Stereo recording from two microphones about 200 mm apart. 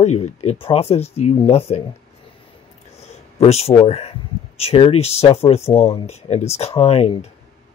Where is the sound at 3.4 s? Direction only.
30° left (ahead or behind).